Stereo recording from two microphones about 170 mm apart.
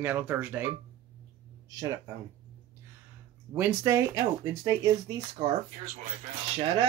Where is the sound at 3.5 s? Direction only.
15° right (ahead or behind).